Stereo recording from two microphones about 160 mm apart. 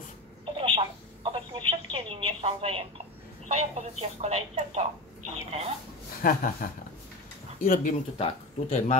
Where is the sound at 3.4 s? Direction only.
45° right (ahead or behind).